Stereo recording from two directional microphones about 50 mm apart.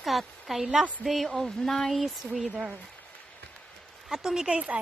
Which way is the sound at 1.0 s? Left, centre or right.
Centre.